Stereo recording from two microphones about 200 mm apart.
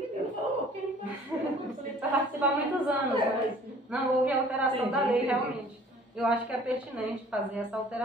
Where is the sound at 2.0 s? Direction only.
5° right (ahead or behind).